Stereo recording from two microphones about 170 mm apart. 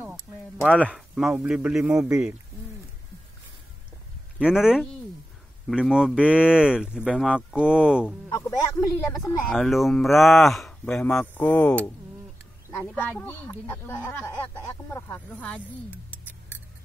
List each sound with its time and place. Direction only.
0.0 s a sound: 5° right (ahead or behind)
0.8 s speech: centre (ahead or behind)
4.4 s speech: 5° right (ahead or behind)
8.3 s speech: 20° left (ahead or behind)
9.2 s speech: centre (ahead or behind)